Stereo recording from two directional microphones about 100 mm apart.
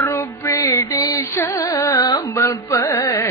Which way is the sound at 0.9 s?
40° left (ahead or behind).